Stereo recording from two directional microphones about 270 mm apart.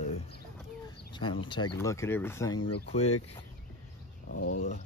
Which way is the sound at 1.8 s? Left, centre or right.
Centre.